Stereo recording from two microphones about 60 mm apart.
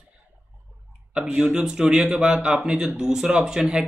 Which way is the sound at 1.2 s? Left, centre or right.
Centre.